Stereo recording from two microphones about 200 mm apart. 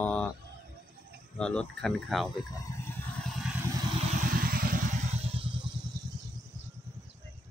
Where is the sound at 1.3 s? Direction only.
5° left (ahead or behind).